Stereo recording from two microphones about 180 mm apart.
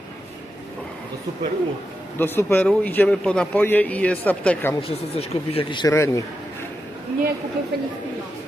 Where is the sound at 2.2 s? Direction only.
10° left (ahead or behind).